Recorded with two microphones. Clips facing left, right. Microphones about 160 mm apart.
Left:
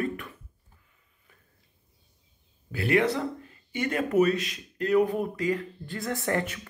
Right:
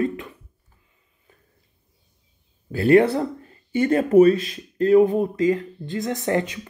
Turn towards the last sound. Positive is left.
turn(degrees=-20)  # may be behind; listen again after turning